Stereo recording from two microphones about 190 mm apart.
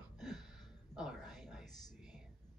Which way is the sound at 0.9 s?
Centre (ahead or behind).